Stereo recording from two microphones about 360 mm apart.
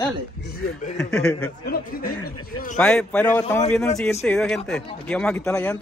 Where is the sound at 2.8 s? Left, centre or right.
Centre.